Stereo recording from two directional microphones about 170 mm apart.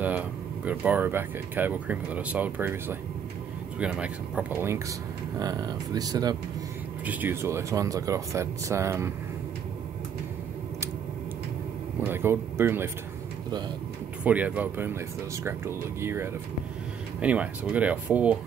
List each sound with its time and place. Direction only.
0.0 s speech: 10° right (ahead or behind)
7.1 s speech: 10° right (ahead or behind)
12.0 s speech: 15° right (ahead or behind)
14.2 s speech: 10° right (ahead or behind)